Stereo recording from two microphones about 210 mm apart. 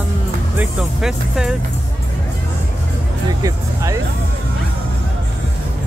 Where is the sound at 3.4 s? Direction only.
15° right (ahead or behind).